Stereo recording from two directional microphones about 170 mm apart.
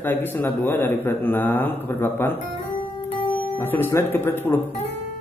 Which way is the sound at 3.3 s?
10° left (ahead or behind).